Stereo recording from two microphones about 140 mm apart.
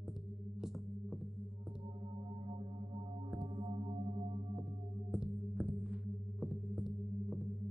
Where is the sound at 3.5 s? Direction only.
45° right (ahead or behind).